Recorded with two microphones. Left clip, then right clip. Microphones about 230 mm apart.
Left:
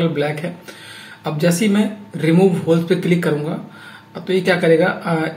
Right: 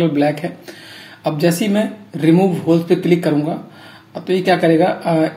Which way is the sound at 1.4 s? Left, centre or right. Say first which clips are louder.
Even; right.